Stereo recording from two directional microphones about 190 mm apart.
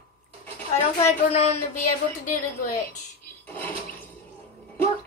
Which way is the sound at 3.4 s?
10° left (ahead or behind).